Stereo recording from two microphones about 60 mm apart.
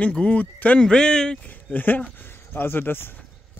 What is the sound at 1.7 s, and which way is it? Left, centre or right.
Speech, left.